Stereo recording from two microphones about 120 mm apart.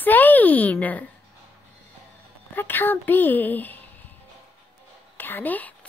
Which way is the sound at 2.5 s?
15° left (ahead or behind).